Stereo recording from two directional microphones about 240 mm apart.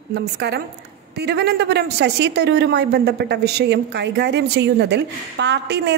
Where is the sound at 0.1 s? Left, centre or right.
Right.